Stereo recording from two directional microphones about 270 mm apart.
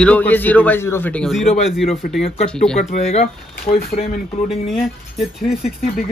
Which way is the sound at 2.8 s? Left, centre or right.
Left.